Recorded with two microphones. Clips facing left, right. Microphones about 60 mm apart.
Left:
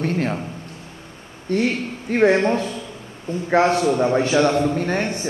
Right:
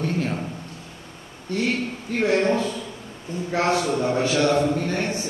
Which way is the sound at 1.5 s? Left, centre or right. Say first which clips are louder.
Left 3 dB; left.